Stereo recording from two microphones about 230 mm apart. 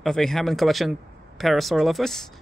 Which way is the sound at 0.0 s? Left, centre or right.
Centre.